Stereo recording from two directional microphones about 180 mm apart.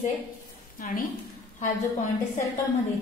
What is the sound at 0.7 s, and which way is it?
Speech, 50° left (ahead or behind).